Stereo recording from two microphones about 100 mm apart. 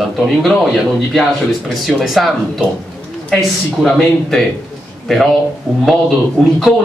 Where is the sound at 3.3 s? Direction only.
5° left (ahead or behind).